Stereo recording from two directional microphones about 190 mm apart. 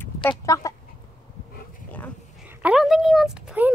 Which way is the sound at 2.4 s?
5° right (ahead or behind).